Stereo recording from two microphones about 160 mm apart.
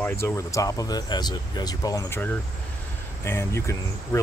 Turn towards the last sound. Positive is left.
turn(degrees=15)  # may be behind; listen again after turning